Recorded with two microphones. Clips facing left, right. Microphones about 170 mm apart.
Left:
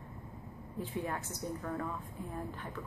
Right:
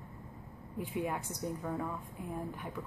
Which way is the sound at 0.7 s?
15° right (ahead or behind).